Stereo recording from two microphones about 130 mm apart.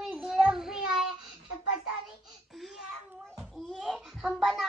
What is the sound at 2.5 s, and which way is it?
A child's voice, centre (ahead or behind).